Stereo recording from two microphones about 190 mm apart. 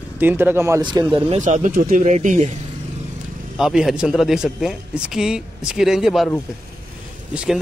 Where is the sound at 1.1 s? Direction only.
35° right (ahead or behind).